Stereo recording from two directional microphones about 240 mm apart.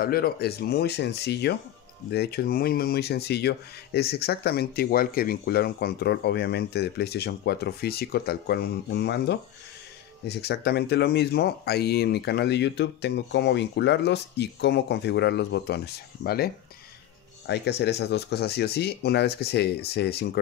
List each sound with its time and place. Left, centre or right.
0.0 s speech: left